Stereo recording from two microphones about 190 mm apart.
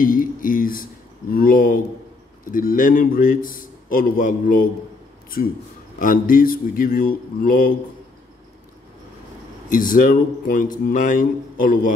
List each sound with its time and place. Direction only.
0.0 s a man's voice: 45° left (ahead or behind)
9.7 s a man's voice: 45° left (ahead or behind)